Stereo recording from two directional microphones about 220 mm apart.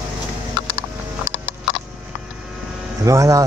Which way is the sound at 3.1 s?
15° right (ahead or behind).